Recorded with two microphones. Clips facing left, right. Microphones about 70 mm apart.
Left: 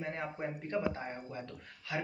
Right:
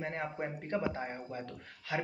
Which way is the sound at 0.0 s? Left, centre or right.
Right.